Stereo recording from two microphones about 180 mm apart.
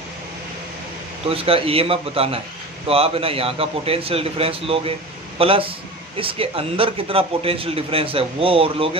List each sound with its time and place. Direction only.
1.3 s a man's voice: 30° right (ahead or behind)